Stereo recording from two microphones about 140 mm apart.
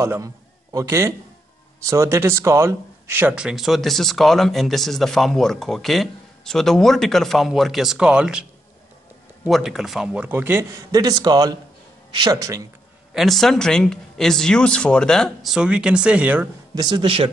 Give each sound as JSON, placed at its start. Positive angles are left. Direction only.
{"t": 0.0, "sound": "speech", "side_deg": -20}
{"t": 9.5, "sound": "a man's voice", "side_deg": 0}
{"t": 13.1, "sound": "speech", "side_deg": 0}
{"t": 16.7, "sound": "a man's voice", "side_deg": -30}